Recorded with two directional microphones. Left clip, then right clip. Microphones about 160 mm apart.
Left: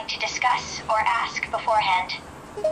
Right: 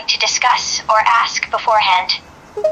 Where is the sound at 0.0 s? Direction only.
40° right (ahead or behind).